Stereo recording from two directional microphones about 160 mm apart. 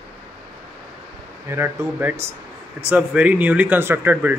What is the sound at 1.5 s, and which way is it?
Speech, 15° right (ahead or behind).